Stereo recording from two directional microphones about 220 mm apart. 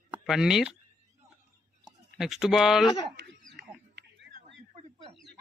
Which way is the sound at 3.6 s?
50° right (ahead or behind).